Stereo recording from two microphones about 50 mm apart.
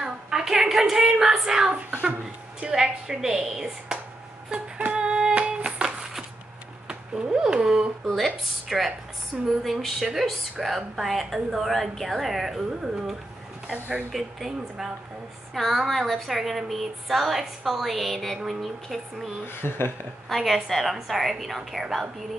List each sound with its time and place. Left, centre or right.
0.0 s a woman's voice: centre
1.9 s speech: right
2.7 s a woman's voice: centre
4.8 s a sound: centre
6.9 s speech: centre
8.0 s speech: centre
13.7 s speech: right
14.1 s speech: centre
19.4 s speech: left
20.2 s speech: centre